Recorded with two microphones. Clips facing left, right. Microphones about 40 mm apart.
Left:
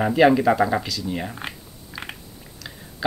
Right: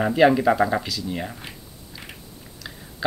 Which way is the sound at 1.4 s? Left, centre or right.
Left.